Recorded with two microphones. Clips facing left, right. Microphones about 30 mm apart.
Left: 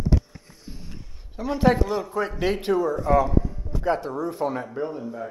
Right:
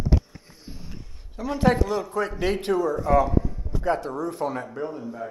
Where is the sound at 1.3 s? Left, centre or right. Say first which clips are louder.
Left 1 dB; centre.